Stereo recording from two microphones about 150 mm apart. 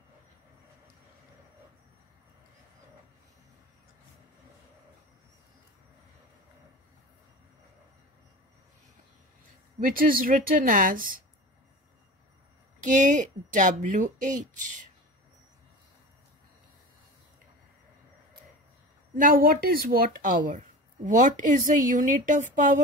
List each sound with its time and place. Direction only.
9.8 s a woman's voice: 70° right (ahead or behind)
12.8 s speech: 55° right (ahead or behind)
19.1 s speech: 70° right (ahead or behind)